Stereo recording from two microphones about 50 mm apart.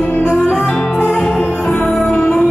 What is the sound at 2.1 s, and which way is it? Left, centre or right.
Music, centre.